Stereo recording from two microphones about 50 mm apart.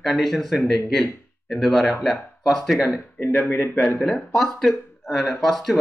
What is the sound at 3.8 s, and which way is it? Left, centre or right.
Speech, left.